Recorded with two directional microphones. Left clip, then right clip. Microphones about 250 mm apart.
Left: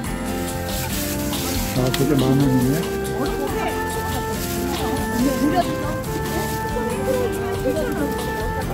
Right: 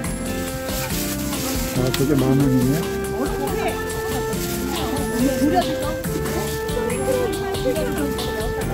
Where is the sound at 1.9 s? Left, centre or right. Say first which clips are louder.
Even; centre.